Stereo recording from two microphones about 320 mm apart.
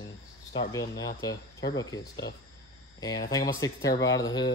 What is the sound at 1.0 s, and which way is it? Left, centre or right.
Speech, centre.